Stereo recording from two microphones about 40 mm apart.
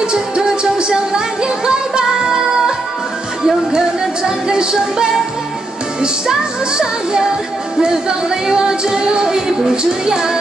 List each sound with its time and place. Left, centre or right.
0.1 s music: centre
3.4 s music: centre
7.8 s music: right